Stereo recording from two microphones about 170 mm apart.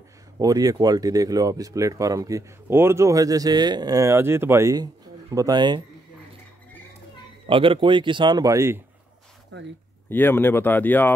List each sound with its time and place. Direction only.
0.4 s speech: 20° right (ahead or behind)
7.4 s speech: 30° right (ahead or behind)
9.5 s speech: 90° right
10.0 s speech: 15° left (ahead or behind)